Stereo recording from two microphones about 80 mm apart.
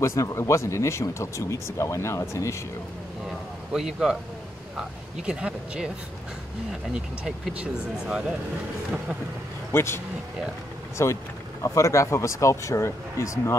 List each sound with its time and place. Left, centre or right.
0.0 s speech: left
3.7 s speech: centre
9.7 s speech: left